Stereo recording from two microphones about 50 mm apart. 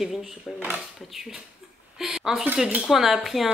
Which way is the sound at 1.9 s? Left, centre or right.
Centre.